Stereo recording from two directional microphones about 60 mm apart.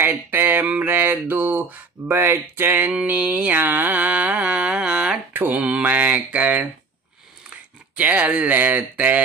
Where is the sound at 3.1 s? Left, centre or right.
Right.